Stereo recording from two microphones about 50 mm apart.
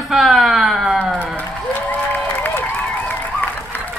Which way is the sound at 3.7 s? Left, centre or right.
Left.